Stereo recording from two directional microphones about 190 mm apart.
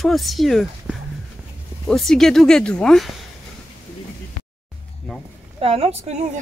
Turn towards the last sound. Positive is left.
turn(degrees=-35)  # may be behind; listen again after turning